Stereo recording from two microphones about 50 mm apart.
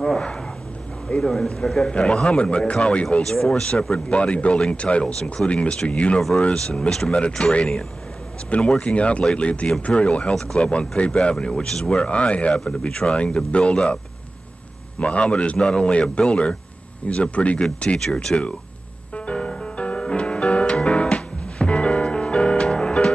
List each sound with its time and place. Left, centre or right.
1.0 s speech: centre
3.2 s speech: centre
3.9 s a man's voice: left
12.5 s a man's voice: centre
15.0 s a man's voice: left
17.9 s speech: centre
19.1 s music: left